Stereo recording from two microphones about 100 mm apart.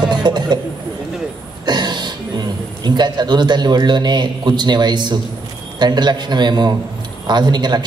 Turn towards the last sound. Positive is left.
turn(degrees=-45)  # may be behind; listen again after turning